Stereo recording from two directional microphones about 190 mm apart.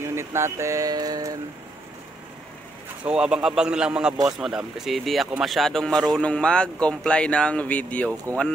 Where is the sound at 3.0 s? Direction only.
5° right (ahead or behind).